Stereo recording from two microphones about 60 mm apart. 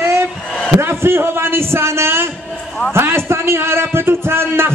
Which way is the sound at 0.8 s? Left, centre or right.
Right.